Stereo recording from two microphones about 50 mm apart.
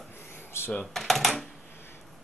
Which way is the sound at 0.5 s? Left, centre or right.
Left.